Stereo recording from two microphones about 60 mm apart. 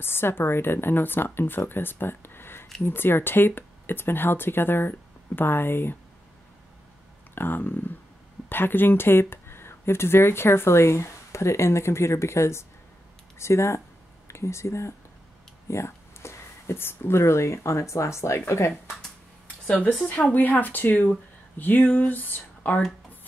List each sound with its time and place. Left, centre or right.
0.0 s speech: left
7.3 s speech: left
20.1 s speech: left